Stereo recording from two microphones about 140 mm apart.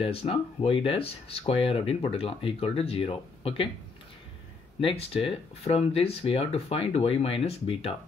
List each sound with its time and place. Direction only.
0.0 s speech: 45° left (ahead or behind)
4.7 s speech: 45° left (ahead or behind)